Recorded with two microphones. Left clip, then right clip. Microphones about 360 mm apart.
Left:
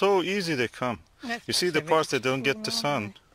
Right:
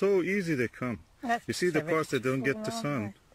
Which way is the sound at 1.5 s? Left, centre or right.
Left.